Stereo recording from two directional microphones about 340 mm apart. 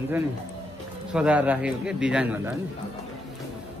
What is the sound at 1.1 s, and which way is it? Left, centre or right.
Speech, centre.